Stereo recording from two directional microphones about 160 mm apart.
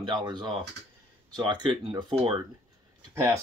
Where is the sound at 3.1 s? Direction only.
15° right (ahead or behind).